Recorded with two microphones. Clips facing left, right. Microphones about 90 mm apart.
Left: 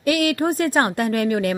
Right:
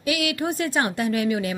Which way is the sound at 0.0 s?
45° left (ahead or behind).